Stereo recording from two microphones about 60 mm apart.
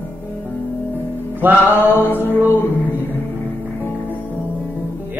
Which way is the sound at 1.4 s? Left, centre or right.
Right.